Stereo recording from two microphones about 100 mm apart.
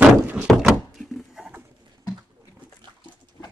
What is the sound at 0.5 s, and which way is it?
Door, 5° right (ahead or behind).